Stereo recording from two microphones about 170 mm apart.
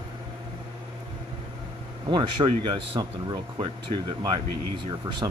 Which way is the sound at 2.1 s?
30° right (ahead or behind).